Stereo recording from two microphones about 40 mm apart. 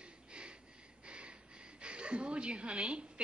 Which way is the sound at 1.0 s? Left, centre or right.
Right.